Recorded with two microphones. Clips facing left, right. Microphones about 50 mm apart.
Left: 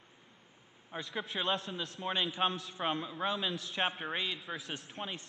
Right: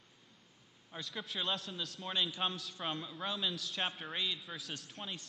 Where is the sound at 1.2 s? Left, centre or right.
Centre.